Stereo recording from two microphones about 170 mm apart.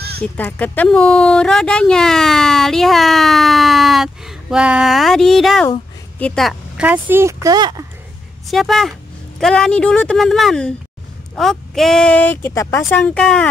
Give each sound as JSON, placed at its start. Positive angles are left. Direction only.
{"t": 0.2, "sound": "speech", "side_deg": 10}
{"t": 6.8, "sound": "speech", "side_deg": -10}
{"t": 8.5, "sound": "speech", "side_deg": 0}